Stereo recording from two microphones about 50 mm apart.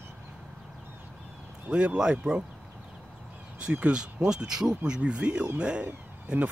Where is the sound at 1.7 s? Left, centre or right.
Centre.